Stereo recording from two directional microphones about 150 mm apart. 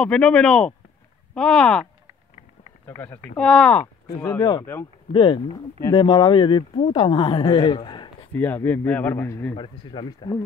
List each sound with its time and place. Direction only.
0.0 s speech: 5° left (ahead or behind)
3.3 s a man's voice: 5° left (ahead or behind)
3.8 s a woman's voice: 20° left (ahead or behind)
8.3 s a man's voice: 10° left (ahead or behind)
9.6 s a woman's voice: 30° left (ahead or behind)